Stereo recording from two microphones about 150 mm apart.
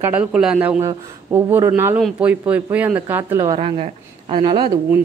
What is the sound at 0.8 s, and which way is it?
Speech, 20° right (ahead or behind).